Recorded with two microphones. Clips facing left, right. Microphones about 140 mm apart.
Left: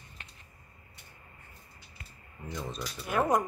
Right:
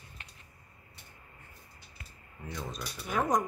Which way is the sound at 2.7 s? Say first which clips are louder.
Left 3 dB; 5° left (ahead or behind).